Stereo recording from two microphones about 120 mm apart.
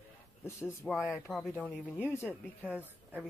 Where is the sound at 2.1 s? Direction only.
20° left (ahead or behind).